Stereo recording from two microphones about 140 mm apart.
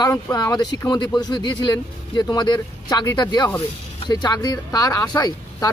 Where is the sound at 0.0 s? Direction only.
30° left (ahead or behind).